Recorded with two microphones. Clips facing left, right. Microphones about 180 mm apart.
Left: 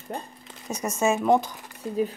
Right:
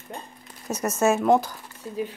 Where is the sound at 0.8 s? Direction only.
5° right (ahead or behind).